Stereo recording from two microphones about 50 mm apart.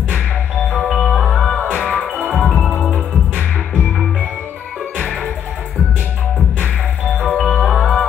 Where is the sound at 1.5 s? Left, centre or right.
Left.